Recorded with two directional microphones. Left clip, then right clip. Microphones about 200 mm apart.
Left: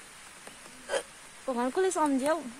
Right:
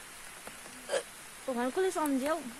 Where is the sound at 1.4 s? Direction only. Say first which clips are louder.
Left 3 dB; 35° left (ahead or behind).